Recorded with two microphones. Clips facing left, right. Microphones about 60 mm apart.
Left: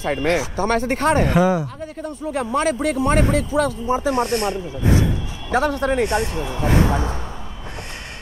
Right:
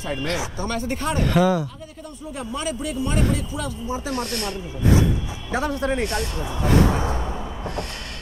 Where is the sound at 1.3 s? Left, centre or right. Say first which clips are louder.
Left 2 dB; left.